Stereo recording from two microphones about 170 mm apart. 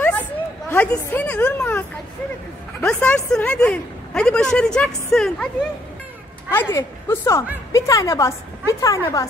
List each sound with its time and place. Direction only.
0.7 s a woman's voice: 10° left (ahead or behind)
6.5 s a woman's voice: 15° left (ahead or behind)